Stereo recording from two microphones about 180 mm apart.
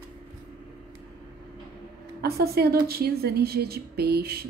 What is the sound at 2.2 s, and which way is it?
A woman's voice, 60° right (ahead or behind).